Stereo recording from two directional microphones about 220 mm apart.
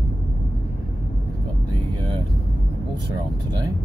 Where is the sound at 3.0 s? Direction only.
20° right (ahead or behind).